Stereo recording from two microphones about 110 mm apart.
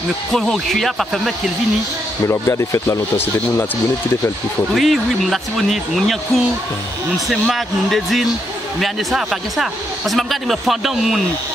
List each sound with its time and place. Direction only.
0.3 s a man's voice: centre (ahead or behind)
2.2 s speech: 25° left (ahead or behind)
4.7 s a man's voice: centre (ahead or behind)